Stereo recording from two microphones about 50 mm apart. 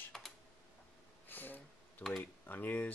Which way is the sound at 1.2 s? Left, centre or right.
Left.